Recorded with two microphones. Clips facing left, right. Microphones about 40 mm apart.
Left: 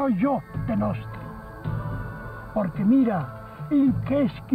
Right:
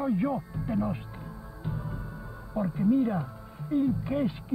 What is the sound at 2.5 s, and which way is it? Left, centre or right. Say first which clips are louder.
Speech: left 5 dB; left.